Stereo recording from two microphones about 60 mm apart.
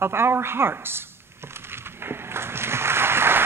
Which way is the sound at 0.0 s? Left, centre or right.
Right.